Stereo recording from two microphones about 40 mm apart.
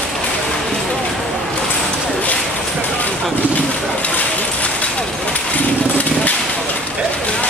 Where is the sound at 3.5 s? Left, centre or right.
Left.